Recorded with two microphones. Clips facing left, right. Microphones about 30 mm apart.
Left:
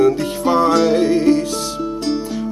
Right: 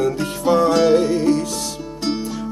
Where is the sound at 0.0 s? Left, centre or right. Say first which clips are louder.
Left 4 dB; left.